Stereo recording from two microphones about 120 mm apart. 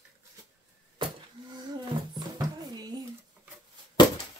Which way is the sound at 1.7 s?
35° right (ahead or behind).